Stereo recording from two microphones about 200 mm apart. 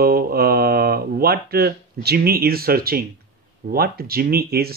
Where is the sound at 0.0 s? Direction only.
50° right (ahead or behind).